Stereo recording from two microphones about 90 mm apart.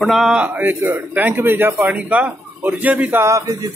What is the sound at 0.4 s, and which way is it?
A man's voice, 20° right (ahead or behind).